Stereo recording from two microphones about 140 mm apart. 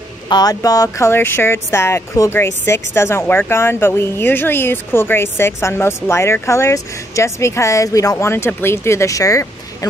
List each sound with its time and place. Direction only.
0.3 s speech: 25° left (ahead or behind)